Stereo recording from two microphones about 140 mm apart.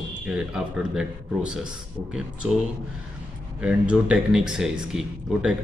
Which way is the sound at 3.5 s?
5° right (ahead or behind).